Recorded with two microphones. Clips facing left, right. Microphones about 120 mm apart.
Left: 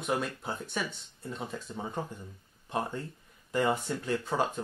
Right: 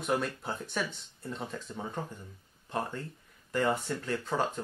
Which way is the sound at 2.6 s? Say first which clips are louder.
Left 1 dB; 15° left (ahead or behind).